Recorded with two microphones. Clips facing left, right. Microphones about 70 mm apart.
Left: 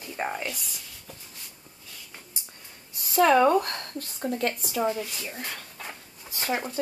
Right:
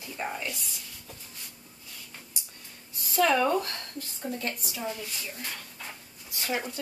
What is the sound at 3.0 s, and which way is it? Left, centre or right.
Speech, left.